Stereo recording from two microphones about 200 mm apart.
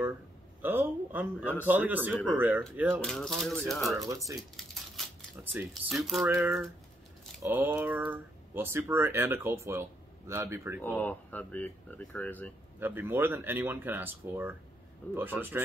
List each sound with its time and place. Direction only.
0.6 s a sound: 10° right (ahead or behind)
1.7 s speech: 10° right (ahead or behind)
3.0 s speech: centre (ahead or behind)
4.0 s speech: 15° right (ahead or behind)
4.4 s speech: centre (ahead or behind)
11.0 s speech: 10° left (ahead or behind)
12.7 s speech: 10° right (ahead or behind)